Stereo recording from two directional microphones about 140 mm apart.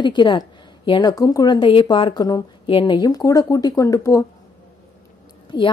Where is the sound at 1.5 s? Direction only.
35° left (ahead or behind).